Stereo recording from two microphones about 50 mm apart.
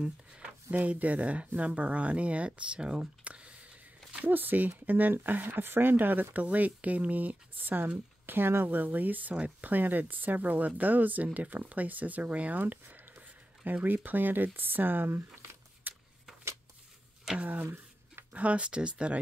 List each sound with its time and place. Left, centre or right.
0.0 s a sound: centre
0.7 s speech: right
4.3 s speech: right
13.8 s speech: right
15.8 s a sound: right
17.4 s speech: right